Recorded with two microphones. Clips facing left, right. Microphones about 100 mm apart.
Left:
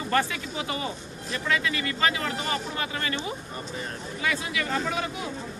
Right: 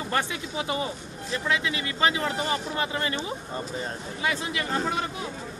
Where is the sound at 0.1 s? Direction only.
25° right (ahead or behind).